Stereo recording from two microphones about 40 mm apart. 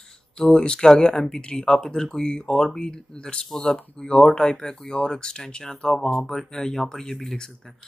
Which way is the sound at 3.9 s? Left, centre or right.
Left.